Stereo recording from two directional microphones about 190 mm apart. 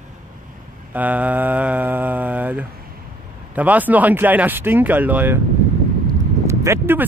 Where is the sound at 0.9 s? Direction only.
10° right (ahead or behind).